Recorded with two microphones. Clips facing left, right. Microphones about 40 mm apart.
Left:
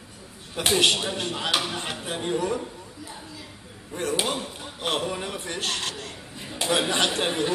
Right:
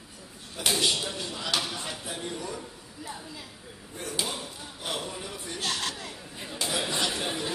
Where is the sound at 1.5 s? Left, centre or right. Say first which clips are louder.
Left 4 dB; left.